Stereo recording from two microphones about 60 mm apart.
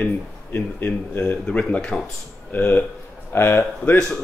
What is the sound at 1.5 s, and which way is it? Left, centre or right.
Speech, left.